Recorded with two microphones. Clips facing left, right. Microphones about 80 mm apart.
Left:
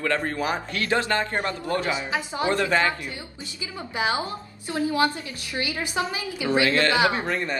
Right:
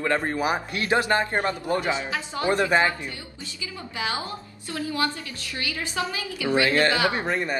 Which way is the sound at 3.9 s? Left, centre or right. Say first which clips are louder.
Left 4 dB; left.